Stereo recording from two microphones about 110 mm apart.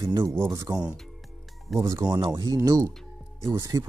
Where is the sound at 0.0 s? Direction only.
40° right (ahead or behind).